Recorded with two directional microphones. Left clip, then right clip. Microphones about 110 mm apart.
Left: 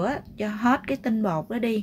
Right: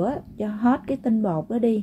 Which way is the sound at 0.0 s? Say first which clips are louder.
Right 1 dB; 35° right (ahead or behind).